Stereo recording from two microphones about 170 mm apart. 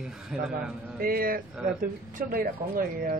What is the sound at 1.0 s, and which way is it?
Speech, 60° right (ahead or behind).